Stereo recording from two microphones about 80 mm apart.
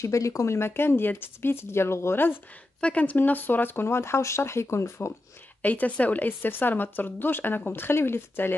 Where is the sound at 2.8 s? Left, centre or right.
Centre; by 5.1 s left.